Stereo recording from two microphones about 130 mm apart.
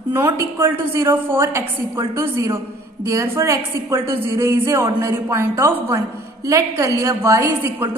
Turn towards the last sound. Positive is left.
turn(degrees=-20)  # may be behind; listen again after turning